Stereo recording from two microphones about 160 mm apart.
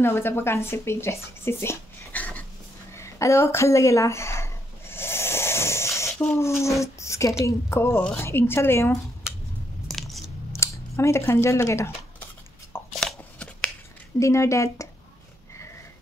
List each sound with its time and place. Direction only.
0.0 s speech: 15° left (ahead or behind)
2.9 s a sound: 20° left (ahead or behind)
6.3 s a woman's voice: 15° left (ahead or behind)
9.8 s biting: centre (ahead or behind)
10.5 s speech: 15° left (ahead or behind)
13.0 s a sound: 10° left (ahead or behind)
14.2 s a woman's voice: 20° left (ahead or behind)